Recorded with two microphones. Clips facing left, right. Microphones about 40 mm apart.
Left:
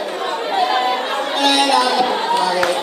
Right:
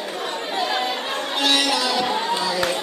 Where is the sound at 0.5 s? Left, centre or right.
Centre.